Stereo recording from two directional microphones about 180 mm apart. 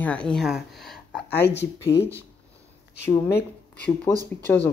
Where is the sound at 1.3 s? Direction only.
65° left (ahead or behind).